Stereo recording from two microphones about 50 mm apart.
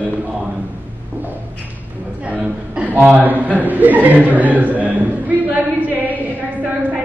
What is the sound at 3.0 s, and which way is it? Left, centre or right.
A man's voice, right.